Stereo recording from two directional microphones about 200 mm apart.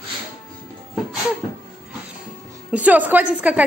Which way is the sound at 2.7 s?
5° right (ahead or behind).